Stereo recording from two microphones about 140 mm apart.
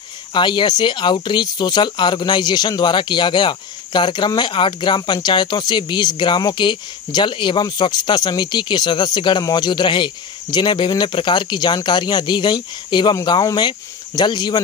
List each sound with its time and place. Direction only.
0.3 s speech: 35° left (ahead or behind)